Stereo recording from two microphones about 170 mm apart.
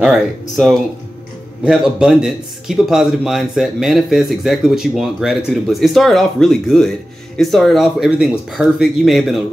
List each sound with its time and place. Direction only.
0.0 s a man's voice: centre (ahead or behind)